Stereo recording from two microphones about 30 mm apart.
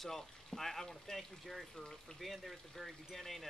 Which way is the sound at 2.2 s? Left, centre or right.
Centre.